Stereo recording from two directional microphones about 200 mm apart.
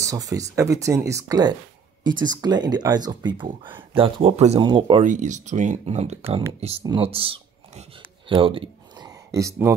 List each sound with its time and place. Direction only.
0.0 s speech: 15° right (ahead or behind)
5.0 s speech: 40° right (ahead or behind)
8.3 s a sound: 25° right (ahead or behind)